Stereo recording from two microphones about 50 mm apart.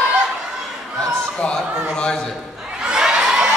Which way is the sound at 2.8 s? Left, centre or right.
Centre.